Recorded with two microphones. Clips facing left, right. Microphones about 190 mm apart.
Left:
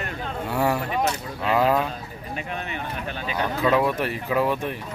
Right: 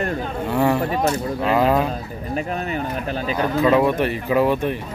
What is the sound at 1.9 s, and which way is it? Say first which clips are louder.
Speech: right 7 dB; 40° right (ahead or behind).